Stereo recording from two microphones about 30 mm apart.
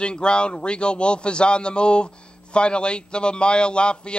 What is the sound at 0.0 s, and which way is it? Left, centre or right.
A man's voice, left.